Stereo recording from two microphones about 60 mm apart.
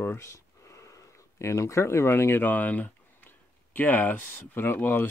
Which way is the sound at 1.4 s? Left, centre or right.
Left.